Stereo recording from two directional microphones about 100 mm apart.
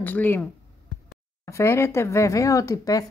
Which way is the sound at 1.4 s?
25° left (ahead or behind).